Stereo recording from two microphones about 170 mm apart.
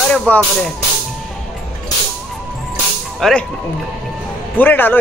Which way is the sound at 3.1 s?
Centre (ahead or behind).